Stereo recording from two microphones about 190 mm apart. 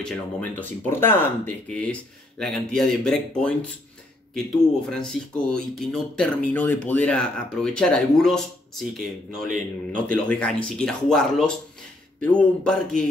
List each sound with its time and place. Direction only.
0.0 s speech: 10° left (ahead or behind)